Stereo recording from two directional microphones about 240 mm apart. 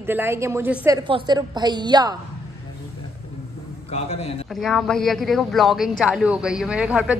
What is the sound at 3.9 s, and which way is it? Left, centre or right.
Speech, left.